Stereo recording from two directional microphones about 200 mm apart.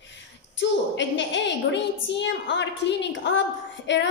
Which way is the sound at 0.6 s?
65° left (ahead or behind).